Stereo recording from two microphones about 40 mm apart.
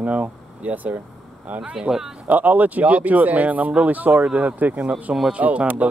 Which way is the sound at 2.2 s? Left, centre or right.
Right.